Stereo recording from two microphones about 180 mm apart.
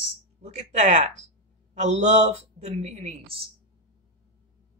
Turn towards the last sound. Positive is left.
turn(degrees=-35)  # may be behind; listen again after turning